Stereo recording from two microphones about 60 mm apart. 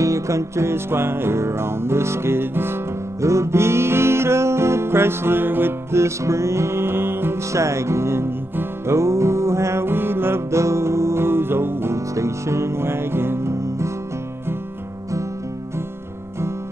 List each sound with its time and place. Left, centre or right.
0.0 s music: right
3.2 s music: right
7.5 s music: right